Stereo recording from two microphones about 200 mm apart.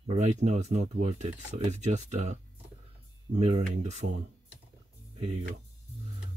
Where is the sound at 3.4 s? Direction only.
30° right (ahead or behind).